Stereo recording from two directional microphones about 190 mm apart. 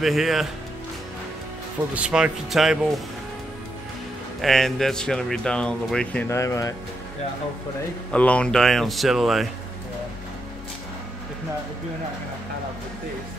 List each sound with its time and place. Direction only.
0.0 s speech: centre (ahead or behind)
2.0 s speech: 5° right (ahead or behind)
4.4 s speech: centre (ahead or behind)
6.2 s speech: 15° left (ahead or behind)
8.1 s speech: 5° left (ahead or behind)